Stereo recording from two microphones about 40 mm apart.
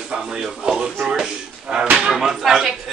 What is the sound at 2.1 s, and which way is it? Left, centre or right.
Speech, centre.